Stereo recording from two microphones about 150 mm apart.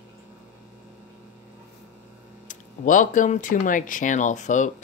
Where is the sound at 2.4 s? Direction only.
60° left (ahead or behind).